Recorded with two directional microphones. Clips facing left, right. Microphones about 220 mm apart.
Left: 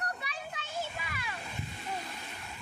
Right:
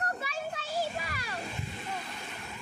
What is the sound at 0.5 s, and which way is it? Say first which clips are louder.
Children playing: right 5 dB; 35° right (ahead or behind).